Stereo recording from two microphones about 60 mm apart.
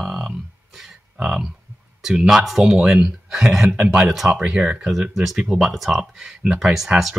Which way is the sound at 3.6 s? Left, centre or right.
Right.